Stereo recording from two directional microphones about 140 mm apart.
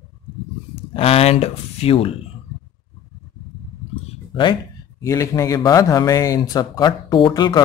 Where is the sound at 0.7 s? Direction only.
45° left (ahead or behind).